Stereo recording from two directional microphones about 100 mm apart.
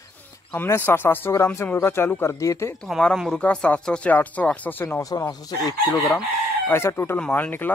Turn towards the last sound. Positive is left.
turn(degrees=20)  # may be behind; listen again after turning